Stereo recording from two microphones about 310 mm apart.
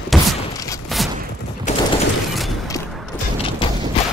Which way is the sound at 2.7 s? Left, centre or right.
Centre.